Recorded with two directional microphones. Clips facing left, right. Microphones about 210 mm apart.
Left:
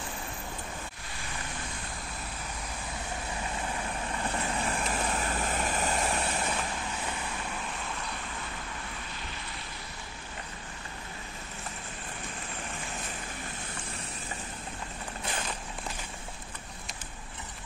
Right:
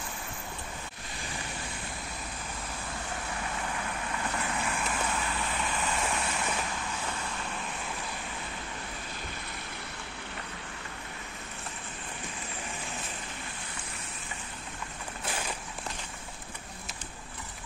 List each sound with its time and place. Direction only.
4.3 s vehicle: 35° left (ahead or behind)